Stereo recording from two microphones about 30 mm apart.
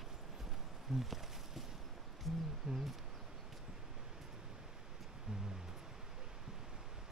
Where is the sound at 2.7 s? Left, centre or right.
Centre.